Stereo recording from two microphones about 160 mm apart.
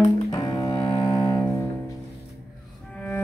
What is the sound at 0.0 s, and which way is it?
Cello, 25° left (ahead or behind).